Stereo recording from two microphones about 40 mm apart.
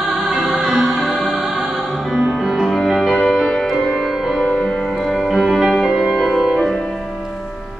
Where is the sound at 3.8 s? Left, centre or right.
Centre.